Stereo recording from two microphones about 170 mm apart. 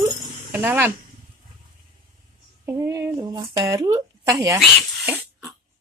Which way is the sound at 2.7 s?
15° right (ahead or behind).